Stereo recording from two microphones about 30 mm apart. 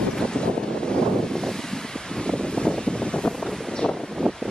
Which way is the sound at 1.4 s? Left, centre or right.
Centre.